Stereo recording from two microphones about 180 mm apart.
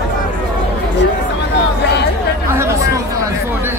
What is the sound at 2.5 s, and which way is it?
Chatter, 15° right (ahead or behind).